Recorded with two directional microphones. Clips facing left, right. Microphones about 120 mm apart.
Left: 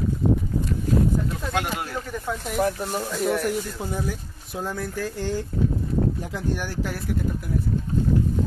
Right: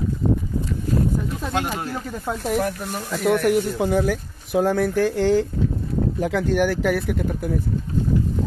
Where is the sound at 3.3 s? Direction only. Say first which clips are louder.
Right 10 dB; 65° right (ahead or behind).